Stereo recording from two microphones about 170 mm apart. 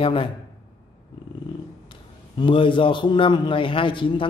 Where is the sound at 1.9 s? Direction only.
30° left (ahead or behind).